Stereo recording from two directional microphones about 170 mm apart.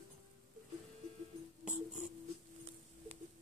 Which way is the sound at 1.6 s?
5° right (ahead or behind).